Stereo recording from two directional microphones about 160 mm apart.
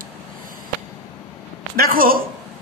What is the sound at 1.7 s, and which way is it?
Speech, 60° right (ahead or behind).